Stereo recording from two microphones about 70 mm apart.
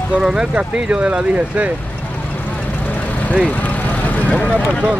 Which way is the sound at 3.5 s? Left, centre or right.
Left.